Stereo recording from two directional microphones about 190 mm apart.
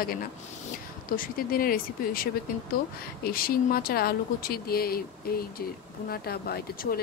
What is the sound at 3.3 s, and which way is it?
Speech, 50° left (ahead or behind).